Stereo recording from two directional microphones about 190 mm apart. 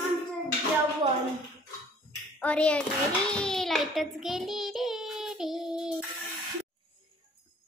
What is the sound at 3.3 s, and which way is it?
Child singing, 5° left (ahead or behind).